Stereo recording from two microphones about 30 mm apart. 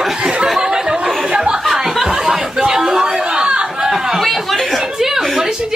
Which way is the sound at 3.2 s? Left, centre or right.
Right.